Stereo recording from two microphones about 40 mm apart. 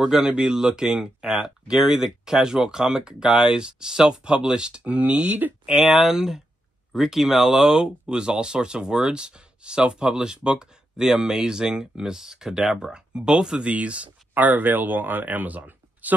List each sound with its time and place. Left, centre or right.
0.0 s speech: centre
1.2 s speech: centre; by 5.3 s right
5.7 s speech: centre
12.9 s speech: right
14.3 s speech: right